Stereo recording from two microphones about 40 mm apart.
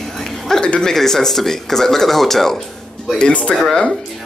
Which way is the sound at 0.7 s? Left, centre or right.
Left.